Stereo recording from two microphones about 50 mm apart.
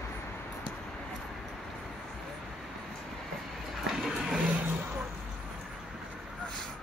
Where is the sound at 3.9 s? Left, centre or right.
Centre.